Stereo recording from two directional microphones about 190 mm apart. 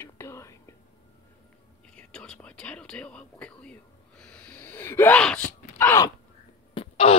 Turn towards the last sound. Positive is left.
turn(degrees=30)  # may be behind; listen again after turning